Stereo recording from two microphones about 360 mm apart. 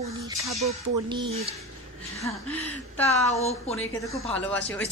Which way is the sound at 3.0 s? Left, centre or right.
Centre.